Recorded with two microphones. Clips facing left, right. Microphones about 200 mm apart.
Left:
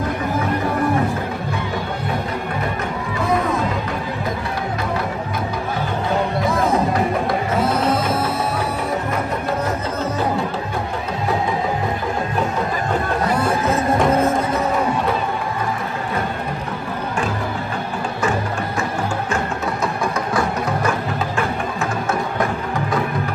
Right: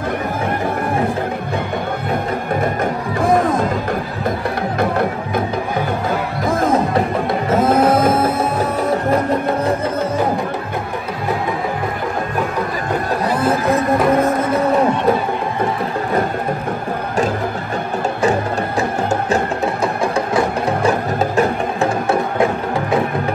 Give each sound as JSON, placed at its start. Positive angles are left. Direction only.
{"t": 2.6, "sound": "music", "side_deg": -50}
{"t": 7.6, "sound": "music", "side_deg": -50}